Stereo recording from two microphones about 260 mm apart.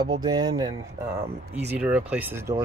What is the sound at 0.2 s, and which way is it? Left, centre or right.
Speech, centre.